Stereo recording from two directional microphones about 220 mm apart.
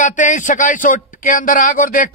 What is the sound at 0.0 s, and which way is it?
Speech, 35° left (ahead or behind).